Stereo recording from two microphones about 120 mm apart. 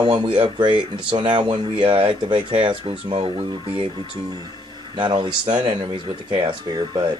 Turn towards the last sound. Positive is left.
turn(degrees=-35)  # may be behind; listen again after turning